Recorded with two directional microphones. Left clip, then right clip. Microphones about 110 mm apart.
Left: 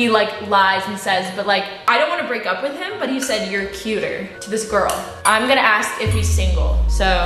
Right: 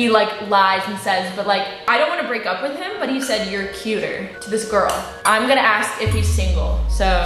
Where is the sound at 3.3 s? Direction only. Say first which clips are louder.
Even; 15° left (ahead or behind).